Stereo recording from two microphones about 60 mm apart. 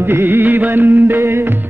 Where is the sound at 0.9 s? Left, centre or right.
Right.